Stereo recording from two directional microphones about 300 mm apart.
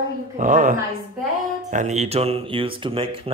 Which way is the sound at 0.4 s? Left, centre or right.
Right.